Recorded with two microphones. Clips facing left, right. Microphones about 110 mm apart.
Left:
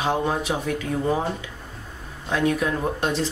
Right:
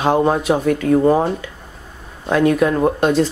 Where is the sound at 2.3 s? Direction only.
60° right (ahead or behind).